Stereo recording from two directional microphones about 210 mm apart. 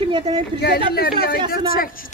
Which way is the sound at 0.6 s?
50° left (ahead or behind).